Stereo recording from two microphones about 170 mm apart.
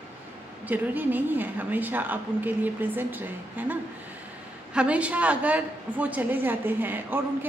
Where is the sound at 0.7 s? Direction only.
10° right (ahead or behind).